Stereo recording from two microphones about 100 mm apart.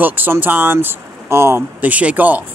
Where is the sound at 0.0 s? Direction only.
20° right (ahead or behind).